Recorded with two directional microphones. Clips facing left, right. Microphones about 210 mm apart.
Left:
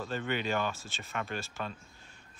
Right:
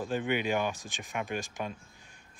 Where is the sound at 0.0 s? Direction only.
15° right (ahead or behind).